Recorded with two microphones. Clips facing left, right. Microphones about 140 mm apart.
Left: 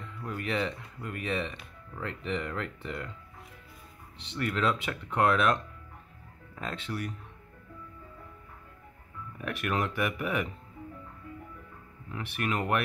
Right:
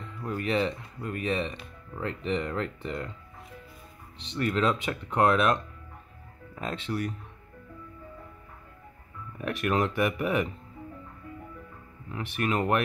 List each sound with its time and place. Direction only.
0.2 s speech: 30° right (ahead or behind)
4.2 s speech: 25° right (ahead or behind)
9.4 s speech: 30° right (ahead or behind)
12.1 s speech: 30° right (ahead or behind)